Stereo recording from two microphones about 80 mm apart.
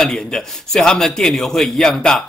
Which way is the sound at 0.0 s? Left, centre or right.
Centre.